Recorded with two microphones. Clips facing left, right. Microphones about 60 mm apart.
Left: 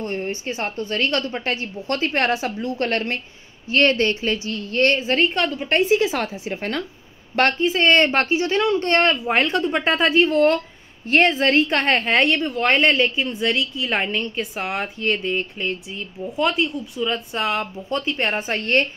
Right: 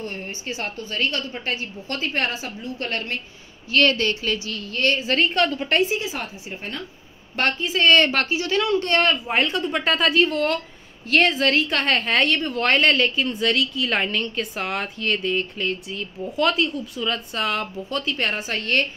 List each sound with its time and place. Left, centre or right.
0.0 s a sound: left
0.3 s a woman's voice: left
3.7 s a woman's voice: left
5.0 s a woman's voice: left
5.9 s a woman's voice: left
7.3 s a woman's voice: left
9.3 s a woman's voice: left